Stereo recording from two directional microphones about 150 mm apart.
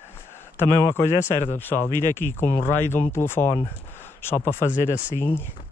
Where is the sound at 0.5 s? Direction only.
15° left (ahead or behind).